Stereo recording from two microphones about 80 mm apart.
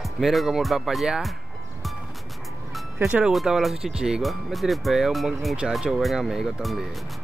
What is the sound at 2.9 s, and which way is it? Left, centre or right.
Speech, right.